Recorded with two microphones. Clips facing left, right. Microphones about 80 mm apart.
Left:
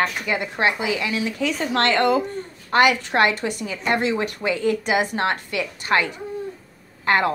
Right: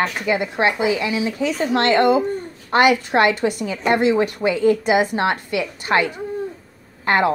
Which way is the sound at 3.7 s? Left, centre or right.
Centre.